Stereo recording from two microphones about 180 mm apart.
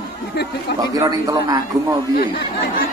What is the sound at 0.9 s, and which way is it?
Speech, 20° right (ahead or behind).